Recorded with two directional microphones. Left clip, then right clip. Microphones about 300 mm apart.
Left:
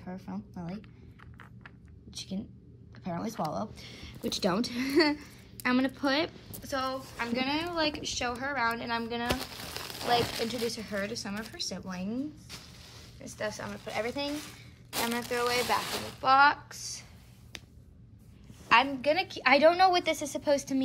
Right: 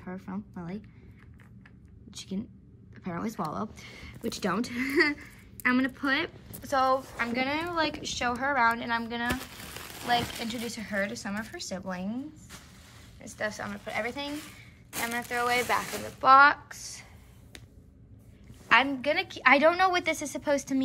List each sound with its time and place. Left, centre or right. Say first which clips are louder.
0.0 s a woman's voice: right 2 dB; centre
2.0 s a woman's voice: right 1 dB; centre
9.3 s a sound: left 1 dB; left
10.4 s a woman's voice: left 3 dB; centre
13.2 s a woman's voice: right 2 dB; centre
14.3 s a sound: left 1 dB; left
15.0 s a woman's voice: even; centre
18.7 s a woman's voice: right 1 dB; centre